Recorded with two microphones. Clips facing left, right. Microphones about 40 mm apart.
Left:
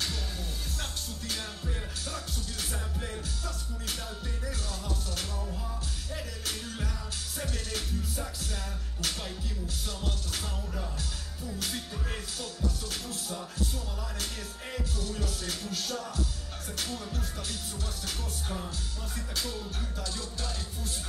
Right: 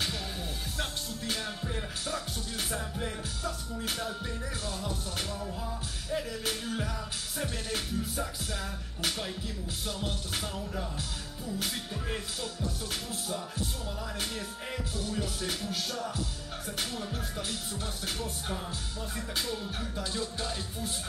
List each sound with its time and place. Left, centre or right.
2.0 s music: centre
11.6 s music: centre
18.0 s music: centre
20.0 s music: right